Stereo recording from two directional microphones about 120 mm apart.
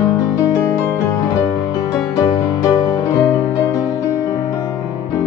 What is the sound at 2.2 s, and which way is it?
Music, 25° left (ahead or behind).